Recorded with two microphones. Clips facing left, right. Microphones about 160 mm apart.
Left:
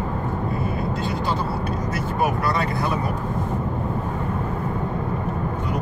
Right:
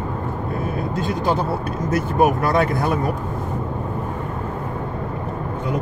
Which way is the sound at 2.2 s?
55° right (ahead or behind).